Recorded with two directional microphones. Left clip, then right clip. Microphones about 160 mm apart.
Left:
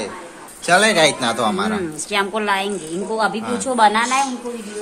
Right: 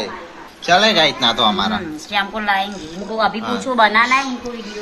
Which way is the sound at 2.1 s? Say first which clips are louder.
Right 1 dB; 75° left (ahead or behind).